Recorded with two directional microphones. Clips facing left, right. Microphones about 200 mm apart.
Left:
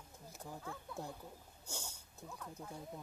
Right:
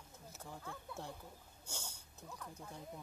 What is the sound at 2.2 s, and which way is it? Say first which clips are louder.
Speech: left 2 dB; centre (ahead or behind).